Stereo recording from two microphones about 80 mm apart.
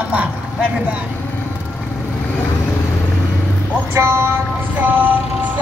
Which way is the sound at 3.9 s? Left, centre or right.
Right.